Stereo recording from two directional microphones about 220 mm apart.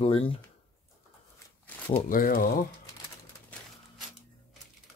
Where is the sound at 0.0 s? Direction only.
25° left (ahead or behind).